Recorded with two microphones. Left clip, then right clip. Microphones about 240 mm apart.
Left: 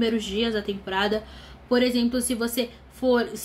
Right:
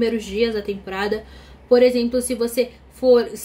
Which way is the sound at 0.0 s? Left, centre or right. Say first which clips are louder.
Right 5 dB; centre.